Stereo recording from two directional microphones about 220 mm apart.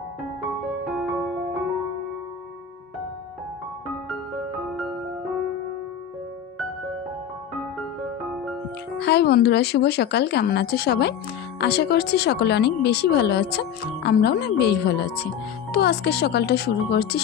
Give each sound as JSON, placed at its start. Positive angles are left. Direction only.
{"t": 0.8, "sound": "music", "side_deg": 0}
{"t": 8.9, "sound": "speech", "side_deg": 50}